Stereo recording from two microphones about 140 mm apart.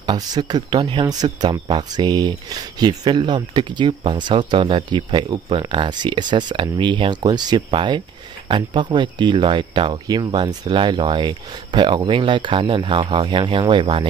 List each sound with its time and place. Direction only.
0.0 s speech: 30° right (ahead or behind)